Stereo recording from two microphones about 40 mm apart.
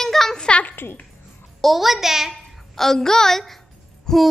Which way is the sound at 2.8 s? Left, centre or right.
Centre.